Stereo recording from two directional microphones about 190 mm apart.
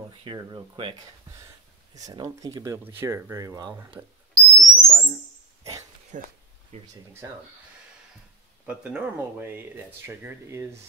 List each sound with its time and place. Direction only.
0.2 s speech: 25° right (ahead or behind)
2.0 s speech: 20° right (ahead or behind)
3.9 s a sound: 20° right (ahead or behind)
5.6 s dog: 15° right (ahead or behind)
6.1 s speech: 40° right (ahead or behind)
8.6 s speech: 5° right (ahead or behind)